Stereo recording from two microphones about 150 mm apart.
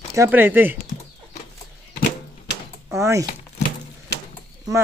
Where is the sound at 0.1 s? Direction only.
15° right (ahead or behind).